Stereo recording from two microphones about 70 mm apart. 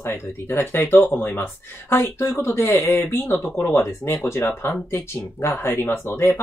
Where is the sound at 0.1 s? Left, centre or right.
Left.